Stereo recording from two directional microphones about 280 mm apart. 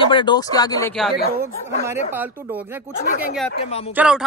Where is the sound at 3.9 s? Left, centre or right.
Centre.